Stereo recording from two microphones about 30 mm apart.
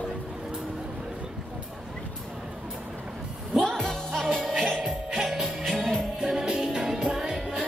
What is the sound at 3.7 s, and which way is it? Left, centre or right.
Music, centre.